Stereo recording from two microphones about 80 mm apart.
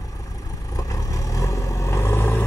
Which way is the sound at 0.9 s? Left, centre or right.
Left.